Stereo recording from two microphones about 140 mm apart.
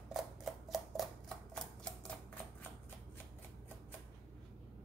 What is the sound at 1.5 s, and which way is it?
Typewriter, 5° left (ahead or behind).